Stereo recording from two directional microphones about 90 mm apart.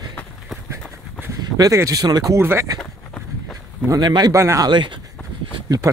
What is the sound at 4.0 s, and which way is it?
Speech, 50° right (ahead or behind).